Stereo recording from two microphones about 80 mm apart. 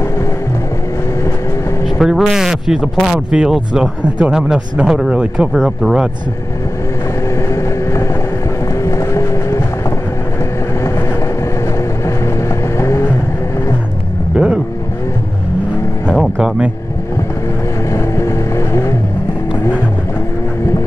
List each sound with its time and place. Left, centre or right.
2.0 s speech: centre
5.6 s speech: centre
8.8 s vehicle: left
12.7 s vehicle: left
14.3 s vehicle: centre
16.2 s music: centre
17.9 s vehicle: left